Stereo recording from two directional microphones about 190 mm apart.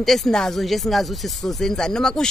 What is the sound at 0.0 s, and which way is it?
Speech, centre (ahead or behind).